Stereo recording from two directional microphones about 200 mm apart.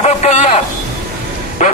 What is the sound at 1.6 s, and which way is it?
Bow-wow, 40° left (ahead or behind).